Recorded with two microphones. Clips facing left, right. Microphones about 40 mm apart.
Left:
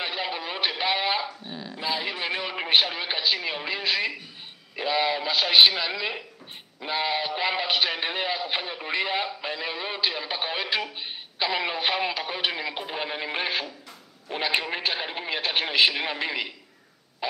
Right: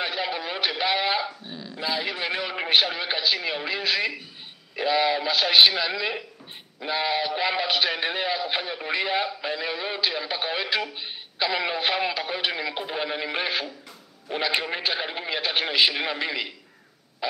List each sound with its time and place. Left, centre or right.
0.0 s a sound: centre
1.5 s dog: centre
1.8 s speech: centre
14.8 s speech: centre